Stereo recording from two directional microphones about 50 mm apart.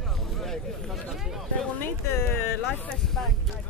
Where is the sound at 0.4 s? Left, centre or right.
Centre.